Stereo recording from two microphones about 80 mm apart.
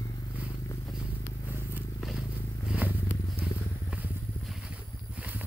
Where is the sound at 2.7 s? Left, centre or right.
Centre.